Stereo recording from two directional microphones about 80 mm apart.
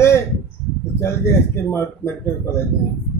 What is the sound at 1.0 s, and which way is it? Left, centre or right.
Speech, left.